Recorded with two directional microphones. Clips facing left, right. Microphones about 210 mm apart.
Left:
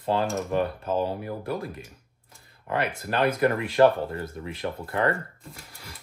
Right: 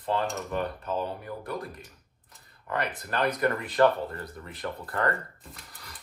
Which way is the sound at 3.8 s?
25° left (ahead or behind).